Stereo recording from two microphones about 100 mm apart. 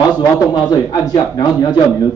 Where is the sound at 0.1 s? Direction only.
40° left (ahead or behind).